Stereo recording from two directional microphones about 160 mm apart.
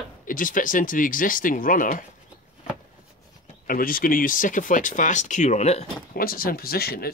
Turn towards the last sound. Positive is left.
turn(degrees=70)  # may be behind; listen again after turning